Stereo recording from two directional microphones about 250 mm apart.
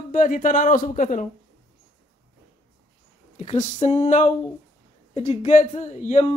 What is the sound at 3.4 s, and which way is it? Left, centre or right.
Speech, left.